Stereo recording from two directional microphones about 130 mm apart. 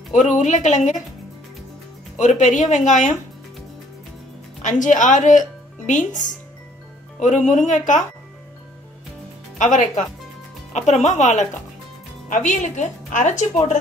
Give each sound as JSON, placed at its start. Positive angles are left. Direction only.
{"t": 0.1, "sound": "a woman's voice", "side_deg": 70}
{"t": 2.1, "sound": "a woman's voice", "side_deg": 70}
{"t": 4.6, "sound": "a woman's voice", "side_deg": 75}
{"t": 7.2, "sound": "a woman's voice", "side_deg": 70}
{"t": 9.6, "sound": "a woman's voice", "side_deg": 70}